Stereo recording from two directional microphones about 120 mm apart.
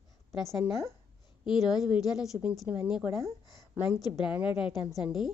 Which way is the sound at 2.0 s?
5° right (ahead or behind).